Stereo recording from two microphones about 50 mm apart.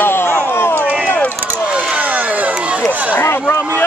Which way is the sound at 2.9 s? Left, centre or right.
Right.